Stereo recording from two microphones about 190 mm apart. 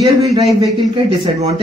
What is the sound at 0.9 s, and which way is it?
Speech, 35° right (ahead or behind).